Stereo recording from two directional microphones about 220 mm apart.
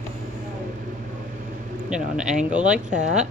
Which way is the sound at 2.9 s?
30° right (ahead or behind).